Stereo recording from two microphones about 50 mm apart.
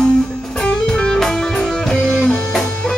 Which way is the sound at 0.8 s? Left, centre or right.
Centre.